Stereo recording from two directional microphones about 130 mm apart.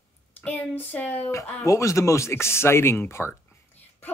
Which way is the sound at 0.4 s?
15° left (ahead or behind).